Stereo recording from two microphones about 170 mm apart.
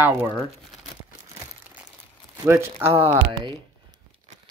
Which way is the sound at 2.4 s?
15° right (ahead or behind).